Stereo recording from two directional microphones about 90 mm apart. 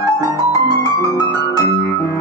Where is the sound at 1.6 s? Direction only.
35° left (ahead or behind).